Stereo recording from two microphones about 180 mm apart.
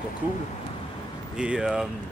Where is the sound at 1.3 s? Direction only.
5° right (ahead or behind).